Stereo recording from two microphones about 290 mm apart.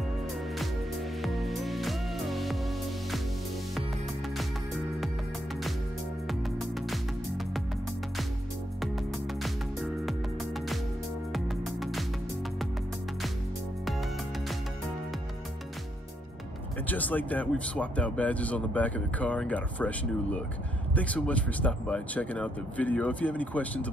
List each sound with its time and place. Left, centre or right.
1.2 s music: centre
6.2 s music: centre
11.3 s music: centre
16.8 s speech: centre